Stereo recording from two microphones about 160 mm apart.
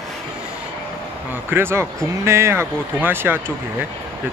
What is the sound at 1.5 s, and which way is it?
Speech, 15° right (ahead or behind).